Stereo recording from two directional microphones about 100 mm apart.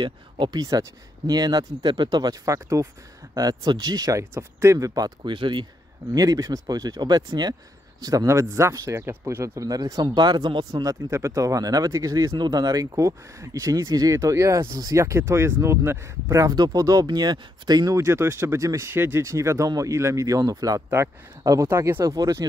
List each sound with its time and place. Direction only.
0.0 s speech: 55° right (ahead or behind)
0.6 s speech: 40° right (ahead or behind); by 5.7 s 55° right (ahead or behind)
6.1 s speech: 35° right (ahead or behind)
8.3 s speech: 30° right (ahead or behind)